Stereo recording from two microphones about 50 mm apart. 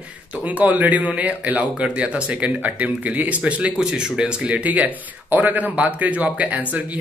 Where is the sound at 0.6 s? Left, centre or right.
Right.